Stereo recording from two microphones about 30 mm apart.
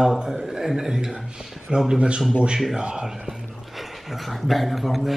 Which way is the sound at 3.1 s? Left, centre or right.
Centre.